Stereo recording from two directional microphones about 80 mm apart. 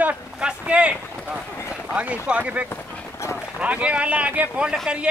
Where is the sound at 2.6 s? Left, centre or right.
Left.